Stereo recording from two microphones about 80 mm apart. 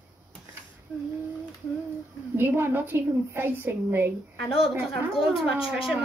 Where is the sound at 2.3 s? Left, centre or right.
Right.